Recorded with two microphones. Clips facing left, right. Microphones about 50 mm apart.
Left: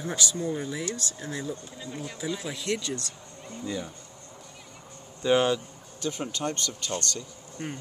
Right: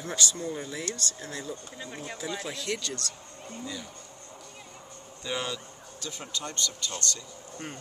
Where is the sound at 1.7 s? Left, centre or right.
Right.